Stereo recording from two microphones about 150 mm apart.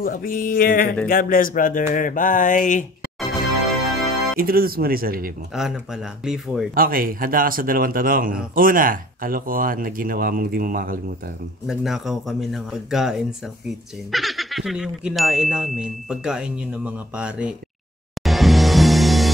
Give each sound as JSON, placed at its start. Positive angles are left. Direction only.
{"t": 0.0, "sound": "music", "side_deg": 70}
{"t": 1.0, "sound": "a sound", "side_deg": 70}
{"t": 4.4, "sound": "speech", "side_deg": -85}
{"t": 5.5, "sound": "speech", "side_deg": -5}
{"t": 6.7, "sound": "speech", "side_deg": -75}
{"t": 11.6, "sound": "speech", "side_deg": -5}
{"t": 18.2, "sound": "music", "side_deg": 0}